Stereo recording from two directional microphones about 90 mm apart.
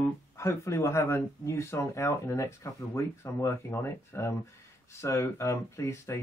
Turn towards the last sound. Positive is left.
turn(degrees=30)  # may be behind; listen again after turning